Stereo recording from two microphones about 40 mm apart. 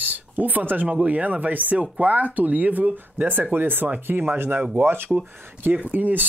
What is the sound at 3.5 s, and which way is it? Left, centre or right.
Speech, right.